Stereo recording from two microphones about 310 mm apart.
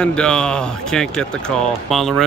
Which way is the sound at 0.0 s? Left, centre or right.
Centre.